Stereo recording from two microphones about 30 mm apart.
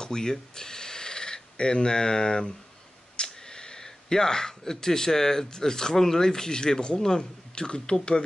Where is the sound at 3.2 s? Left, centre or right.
Left.